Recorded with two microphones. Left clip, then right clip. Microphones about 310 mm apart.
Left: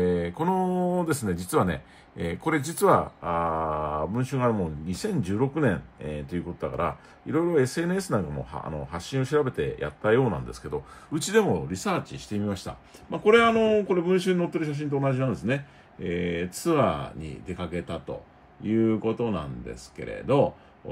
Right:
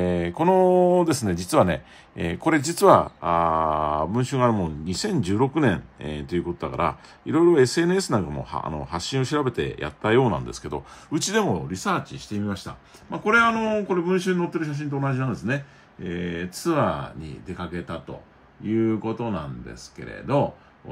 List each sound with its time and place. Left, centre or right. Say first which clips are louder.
0.0 s speech: right 3 dB; right; by 20.4 s centre